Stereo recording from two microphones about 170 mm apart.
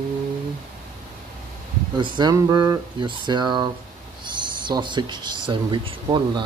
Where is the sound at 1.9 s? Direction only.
25° right (ahead or behind).